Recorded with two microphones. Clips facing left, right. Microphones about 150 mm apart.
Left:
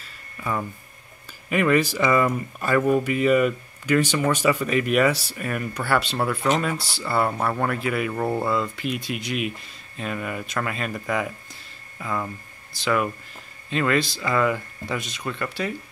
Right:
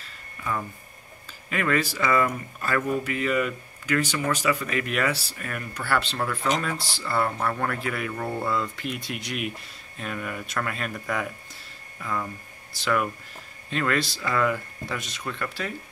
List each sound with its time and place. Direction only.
1.5 s speech: 15° left (ahead or behind)
7.0 s speech: 5° left (ahead or behind)
8.1 s speech: 20° left (ahead or behind)
8.5 s speech: 5° left (ahead or behind)